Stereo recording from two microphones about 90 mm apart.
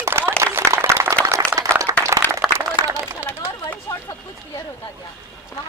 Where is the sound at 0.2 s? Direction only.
30° right (ahead or behind).